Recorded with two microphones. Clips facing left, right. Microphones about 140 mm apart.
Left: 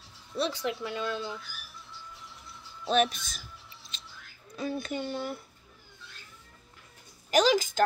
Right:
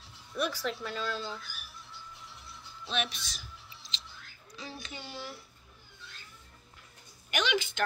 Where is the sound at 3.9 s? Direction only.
50° left (ahead or behind).